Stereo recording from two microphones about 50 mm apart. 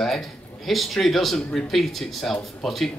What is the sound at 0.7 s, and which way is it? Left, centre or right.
Speech, centre.